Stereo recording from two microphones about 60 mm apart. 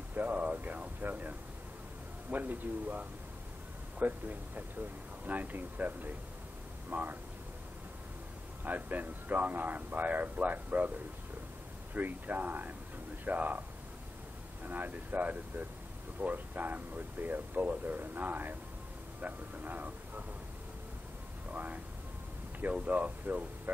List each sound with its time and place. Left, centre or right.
0.1 s speech: right
2.3 s speech: right
8.6 s speech: right
11.9 s speech: right
21.5 s speech: right
22.8 s speech: right